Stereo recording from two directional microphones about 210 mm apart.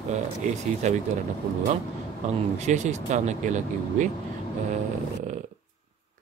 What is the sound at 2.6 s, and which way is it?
Speech, 35° right (ahead or behind).